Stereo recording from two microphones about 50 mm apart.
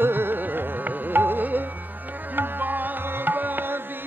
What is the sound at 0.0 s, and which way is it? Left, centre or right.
Music, right.